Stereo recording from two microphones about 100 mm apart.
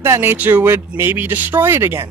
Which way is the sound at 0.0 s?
25° right (ahead or behind).